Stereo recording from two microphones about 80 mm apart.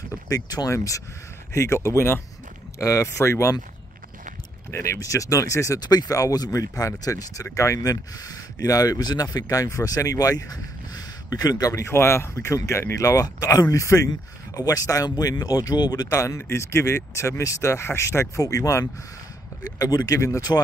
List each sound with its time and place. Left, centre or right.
0.3 s speech: left
4.6 s speech: left
5.8 s speech: left
20.2 s speech: left